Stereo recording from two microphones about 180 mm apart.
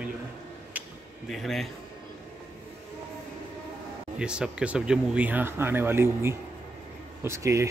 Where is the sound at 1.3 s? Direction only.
Centre (ahead or behind).